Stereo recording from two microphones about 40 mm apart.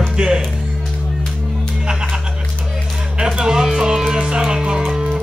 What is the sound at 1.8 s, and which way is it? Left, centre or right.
Music, centre.